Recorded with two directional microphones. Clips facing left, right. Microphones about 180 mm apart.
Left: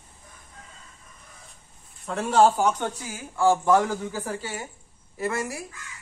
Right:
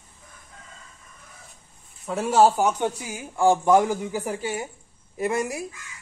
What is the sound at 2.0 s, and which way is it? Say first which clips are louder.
Speech: right 1 dB; 5° right (ahead or behind).